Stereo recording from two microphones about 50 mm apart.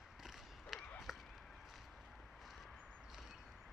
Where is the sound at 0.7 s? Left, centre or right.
Left.